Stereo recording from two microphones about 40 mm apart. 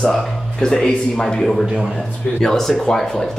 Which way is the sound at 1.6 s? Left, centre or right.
Right.